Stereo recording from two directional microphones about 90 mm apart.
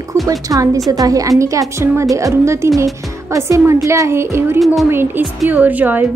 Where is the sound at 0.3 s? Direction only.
40° right (ahead or behind).